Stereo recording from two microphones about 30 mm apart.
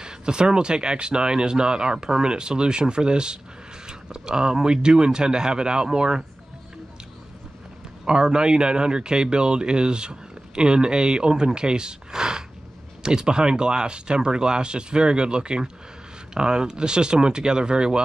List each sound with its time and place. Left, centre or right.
0.0 s speech: right
8.0 s speech: right